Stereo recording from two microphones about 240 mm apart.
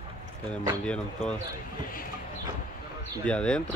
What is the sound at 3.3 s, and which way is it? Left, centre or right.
Speech, centre.